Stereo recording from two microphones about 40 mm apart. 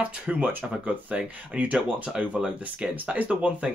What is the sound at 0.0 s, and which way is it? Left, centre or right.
Speech, right.